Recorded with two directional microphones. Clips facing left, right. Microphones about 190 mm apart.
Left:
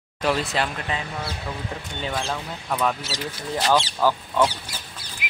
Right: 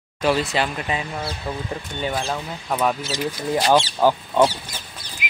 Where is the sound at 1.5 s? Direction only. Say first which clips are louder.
Right 7 dB; 30° right (ahead or behind).